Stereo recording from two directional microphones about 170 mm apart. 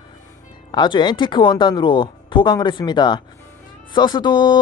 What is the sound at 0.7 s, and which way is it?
Speech, 30° left (ahead or behind).